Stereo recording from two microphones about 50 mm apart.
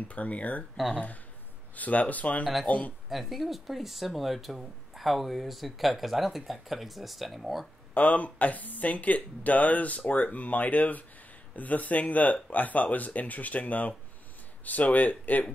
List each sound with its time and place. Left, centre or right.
0.1 s speech: left
1.8 s speech: left
3.1 s speech: centre
7.9 s speech: left